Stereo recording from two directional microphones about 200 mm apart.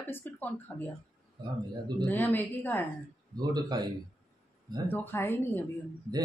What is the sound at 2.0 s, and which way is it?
Speech, 10° left (ahead or behind).